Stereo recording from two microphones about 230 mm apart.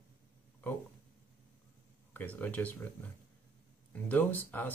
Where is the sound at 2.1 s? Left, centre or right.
Centre.